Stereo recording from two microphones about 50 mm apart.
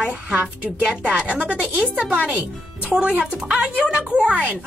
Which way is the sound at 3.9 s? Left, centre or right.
Centre.